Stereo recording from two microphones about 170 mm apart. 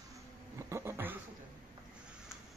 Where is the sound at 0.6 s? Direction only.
15° right (ahead or behind).